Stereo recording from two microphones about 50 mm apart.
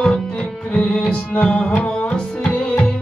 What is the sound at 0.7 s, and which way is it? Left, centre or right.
Music, centre.